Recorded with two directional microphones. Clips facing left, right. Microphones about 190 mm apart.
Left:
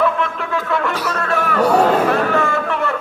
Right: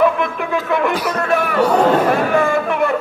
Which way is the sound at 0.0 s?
15° right (ahead or behind).